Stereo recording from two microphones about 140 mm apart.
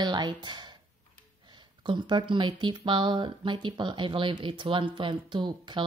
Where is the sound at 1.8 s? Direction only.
35° right (ahead or behind).